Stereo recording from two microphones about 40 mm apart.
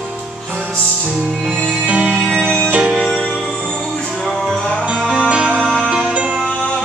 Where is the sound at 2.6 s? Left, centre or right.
Right.